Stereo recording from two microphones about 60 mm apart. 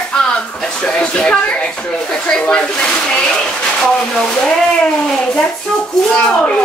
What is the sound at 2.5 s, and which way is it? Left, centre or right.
Speech, centre.